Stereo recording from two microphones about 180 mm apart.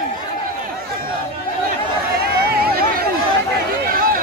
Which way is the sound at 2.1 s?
60° right (ahead or behind).